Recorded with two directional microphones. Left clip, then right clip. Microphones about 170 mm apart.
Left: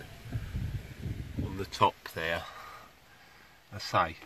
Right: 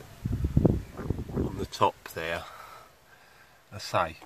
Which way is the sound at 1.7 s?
10° right (ahead or behind).